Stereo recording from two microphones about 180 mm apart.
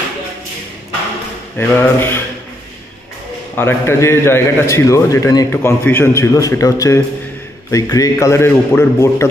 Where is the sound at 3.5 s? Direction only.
15° left (ahead or behind).